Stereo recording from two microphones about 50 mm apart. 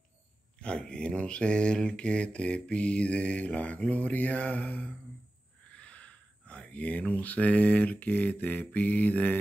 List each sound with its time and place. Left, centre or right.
0.6 s mantra: centre
5.7 s speech: left